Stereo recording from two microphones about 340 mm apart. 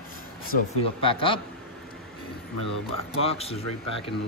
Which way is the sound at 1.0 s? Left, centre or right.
Centre.